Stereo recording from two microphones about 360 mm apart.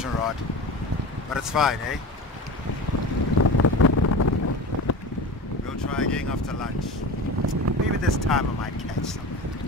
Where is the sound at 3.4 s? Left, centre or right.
Left.